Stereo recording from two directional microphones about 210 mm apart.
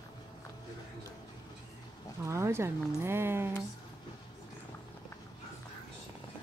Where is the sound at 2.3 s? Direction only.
10° right (ahead or behind).